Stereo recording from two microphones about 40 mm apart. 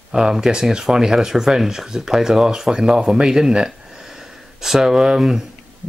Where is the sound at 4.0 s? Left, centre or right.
Centre.